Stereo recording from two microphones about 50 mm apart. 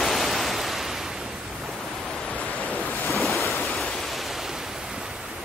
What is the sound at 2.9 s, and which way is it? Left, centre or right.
Waves, left.